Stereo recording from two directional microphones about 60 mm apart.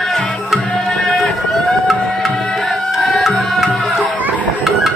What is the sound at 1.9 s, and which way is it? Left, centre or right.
Music, centre.